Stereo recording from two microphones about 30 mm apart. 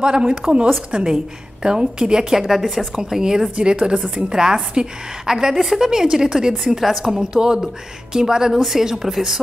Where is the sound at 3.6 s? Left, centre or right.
Right.